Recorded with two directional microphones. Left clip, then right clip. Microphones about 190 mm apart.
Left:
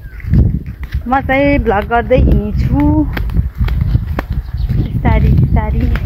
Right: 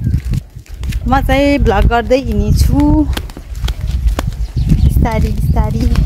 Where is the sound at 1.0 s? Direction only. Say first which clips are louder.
Even; 10° right (ahead or behind).